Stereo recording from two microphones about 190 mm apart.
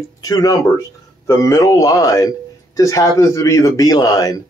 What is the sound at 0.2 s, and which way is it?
A man's voice, 20° left (ahead or behind).